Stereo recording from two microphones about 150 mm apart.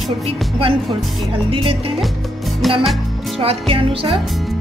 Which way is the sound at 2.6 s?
Centre (ahead or behind).